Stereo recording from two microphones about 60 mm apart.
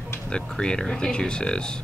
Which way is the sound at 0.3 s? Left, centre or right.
Centre.